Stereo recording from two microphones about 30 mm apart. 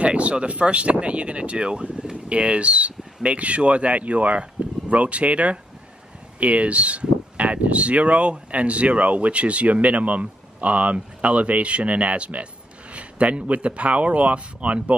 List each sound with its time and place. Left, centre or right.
0.0 s speech: right
2.2 s a sound: right
3.3 s speech: right